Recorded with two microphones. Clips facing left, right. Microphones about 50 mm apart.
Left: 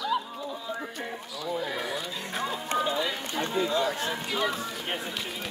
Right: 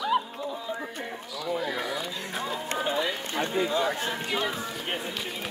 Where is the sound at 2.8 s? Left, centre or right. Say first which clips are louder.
Right 1 dB; right.